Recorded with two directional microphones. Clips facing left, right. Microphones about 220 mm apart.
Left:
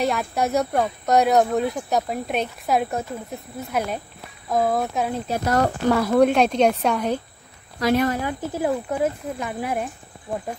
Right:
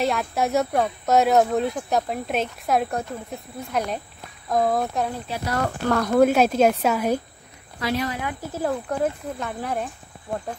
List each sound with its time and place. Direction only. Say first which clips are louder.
0.0 s speech: left 1 dB; centre (ahead or behind)
5.3 s speech: left 8 dB; 45° left (ahead or behind)
5.9 s speech: even; 5° left (ahead or behind)
7.8 s speech: left 6 dB; 50° left (ahead or behind)
8.6 s speech: left 1 dB; 10° left (ahead or behind)